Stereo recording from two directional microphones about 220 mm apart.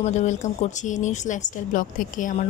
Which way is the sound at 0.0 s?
35° left (ahead or behind).